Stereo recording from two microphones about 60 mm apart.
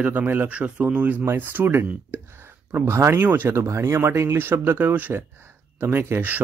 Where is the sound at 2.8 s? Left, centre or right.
Right.